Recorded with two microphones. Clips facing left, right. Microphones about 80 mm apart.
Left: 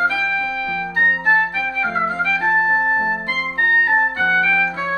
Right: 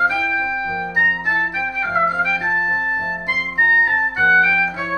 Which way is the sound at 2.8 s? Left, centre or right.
Left.